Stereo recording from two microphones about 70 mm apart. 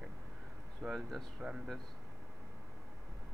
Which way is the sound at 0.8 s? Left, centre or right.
Centre.